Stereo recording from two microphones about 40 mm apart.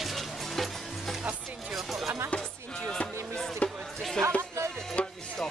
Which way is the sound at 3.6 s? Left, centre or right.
Left.